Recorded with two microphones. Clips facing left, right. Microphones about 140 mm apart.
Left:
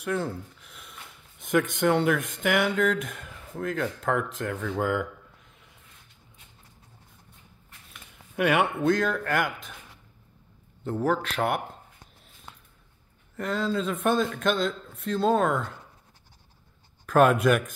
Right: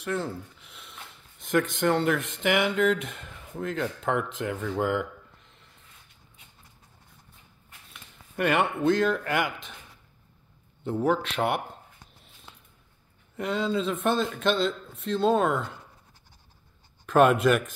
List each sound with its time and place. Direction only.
0.0 s a sound: centre (ahead or behind)
1.8 s speech: 5° left (ahead or behind)
8.1 s speech: 5° left (ahead or behind)
10.8 s speech: 5° right (ahead or behind)
13.4 s speech: 5° right (ahead or behind)
17.0 s speech: centre (ahead or behind)